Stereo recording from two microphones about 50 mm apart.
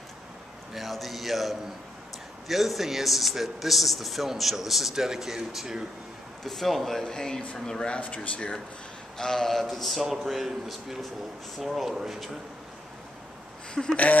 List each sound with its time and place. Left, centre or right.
0.7 s a man's voice: centre
6.4 s speech: centre
8.0 s speech: left
9.2 s a man's voice: centre
13.8 s speech: centre